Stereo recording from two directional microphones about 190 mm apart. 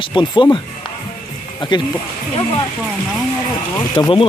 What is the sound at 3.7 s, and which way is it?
Speech, 25° left (ahead or behind).